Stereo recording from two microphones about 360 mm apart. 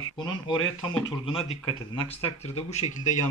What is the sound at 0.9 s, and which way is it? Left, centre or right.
Speech, centre.